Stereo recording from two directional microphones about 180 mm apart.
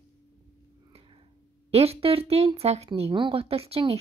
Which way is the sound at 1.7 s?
35° right (ahead or behind).